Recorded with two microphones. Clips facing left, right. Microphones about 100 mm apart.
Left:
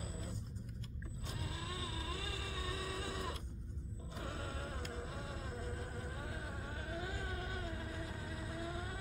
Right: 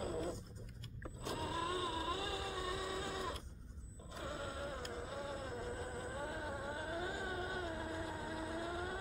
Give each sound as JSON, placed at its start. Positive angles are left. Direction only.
{"t": 0.0, "sound": "vehicle", "side_deg": -65}
{"t": 1.5, "sound": "vehicle", "side_deg": -40}
{"t": 2.7, "sound": "vehicle", "side_deg": -5}
{"t": 4.2, "sound": "a sound", "side_deg": -5}
{"t": 4.9, "sound": "vehicle", "side_deg": -10}
{"t": 5.4, "sound": "vehicle", "side_deg": -20}